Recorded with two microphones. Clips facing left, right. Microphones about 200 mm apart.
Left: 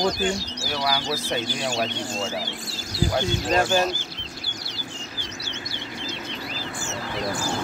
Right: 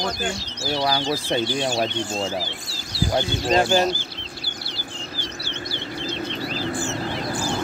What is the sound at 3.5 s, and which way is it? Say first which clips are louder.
Speech: right 3 dB; 25° right (ahead or behind).